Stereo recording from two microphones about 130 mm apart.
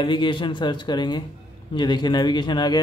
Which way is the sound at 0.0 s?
35° left (ahead or behind).